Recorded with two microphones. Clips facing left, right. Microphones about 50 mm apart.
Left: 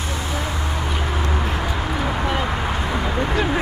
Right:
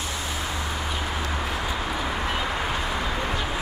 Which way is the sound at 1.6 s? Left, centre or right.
Left.